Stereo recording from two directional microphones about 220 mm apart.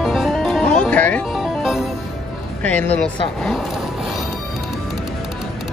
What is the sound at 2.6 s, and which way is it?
Speech, 5° left (ahead or behind).